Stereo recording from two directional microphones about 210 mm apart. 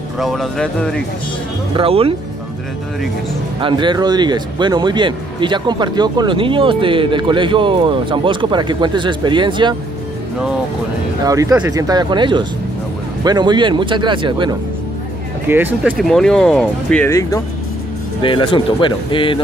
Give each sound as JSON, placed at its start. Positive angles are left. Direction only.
{"t": 0.2, "sound": "speech", "side_deg": 0}
{"t": 1.8, "sound": "speech", "side_deg": -25}
{"t": 3.6, "sound": "speech", "side_deg": -20}
{"t": 11.2, "sound": "speech", "side_deg": -15}
{"t": 15.4, "sound": "speech", "side_deg": -10}